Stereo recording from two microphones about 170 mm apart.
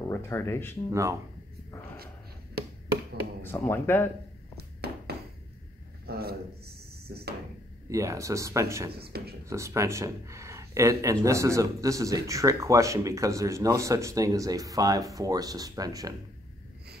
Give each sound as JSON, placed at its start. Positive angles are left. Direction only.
{"t": 0.1, "sound": "speech", "side_deg": 15}
{"t": 0.8, "sound": "speech", "side_deg": -15}
{"t": 3.4, "sound": "speech", "side_deg": 15}
{"t": 4.6, "sound": "a sound", "side_deg": -70}
{"t": 6.0, "sound": "a man's voice", "side_deg": -65}
{"t": 7.9, "sound": "speech", "side_deg": -20}
{"t": 8.9, "sound": "a man's voice", "side_deg": -65}
{"t": 9.5, "sound": "speech", "side_deg": -15}